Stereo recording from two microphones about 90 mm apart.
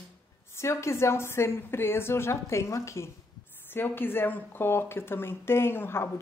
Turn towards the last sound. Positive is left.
turn(degrees=25)  # may be behind; listen again after turning